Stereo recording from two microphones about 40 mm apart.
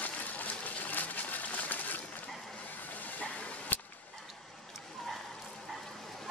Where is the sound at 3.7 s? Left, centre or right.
Left.